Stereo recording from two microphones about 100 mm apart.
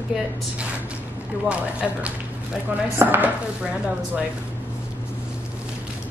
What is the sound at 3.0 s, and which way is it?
Chopping, 20° right (ahead or behind).